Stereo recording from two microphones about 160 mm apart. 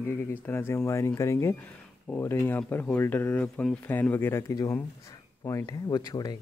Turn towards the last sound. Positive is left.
turn(degrees=25)  # may be behind; listen again after turning